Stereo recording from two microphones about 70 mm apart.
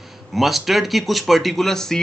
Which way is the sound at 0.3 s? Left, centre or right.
Centre.